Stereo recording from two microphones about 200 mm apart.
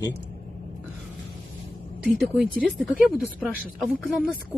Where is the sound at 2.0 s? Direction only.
5° right (ahead or behind).